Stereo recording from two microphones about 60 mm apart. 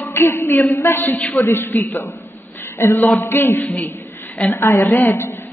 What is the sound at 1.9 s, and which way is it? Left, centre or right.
Speech, left.